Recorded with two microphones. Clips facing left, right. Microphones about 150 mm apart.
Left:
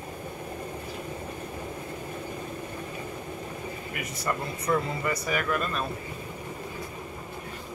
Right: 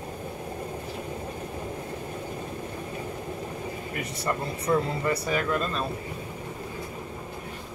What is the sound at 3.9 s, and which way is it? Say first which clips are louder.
Speech: right 1 dB; 30° right (ahead or behind).